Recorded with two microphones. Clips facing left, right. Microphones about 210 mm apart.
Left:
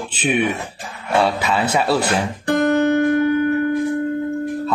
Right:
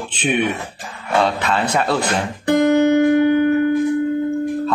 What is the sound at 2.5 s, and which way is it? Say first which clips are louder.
Guitar: right 3 dB; 20° right (ahead or behind).